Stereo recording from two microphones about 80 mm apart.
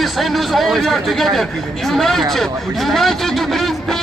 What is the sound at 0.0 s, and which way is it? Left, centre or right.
A man's voice, centre.